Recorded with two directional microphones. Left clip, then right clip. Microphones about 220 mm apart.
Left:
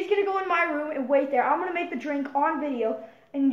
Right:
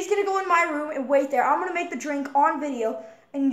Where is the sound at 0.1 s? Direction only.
20° right (ahead or behind).